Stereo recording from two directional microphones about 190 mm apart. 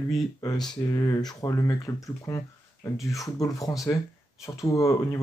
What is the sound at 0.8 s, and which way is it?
Speech, 20° left (ahead or behind).